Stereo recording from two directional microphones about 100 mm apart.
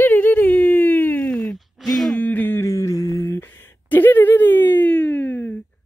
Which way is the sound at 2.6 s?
35° left (ahead or behind).